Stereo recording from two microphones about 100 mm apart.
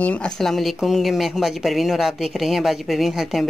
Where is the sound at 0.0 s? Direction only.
10° left (ahead or behind).